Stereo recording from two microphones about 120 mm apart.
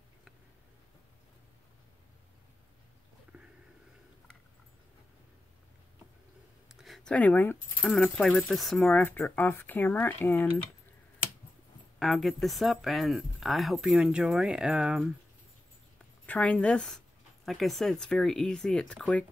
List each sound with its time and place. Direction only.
6.7 s speech: centre (ahead or behind)
8.8 s speech: 15° left (ahead or behind)
12.0 s speech: centre (ahead or behind)
16.3 s speech: 10° left (ahead or behind)